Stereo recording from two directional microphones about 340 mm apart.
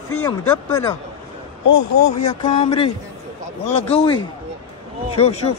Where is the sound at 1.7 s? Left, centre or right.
Left.